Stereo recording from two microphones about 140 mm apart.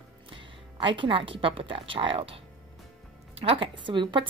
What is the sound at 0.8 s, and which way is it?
A woman's voice, 35° right (ahead or behind).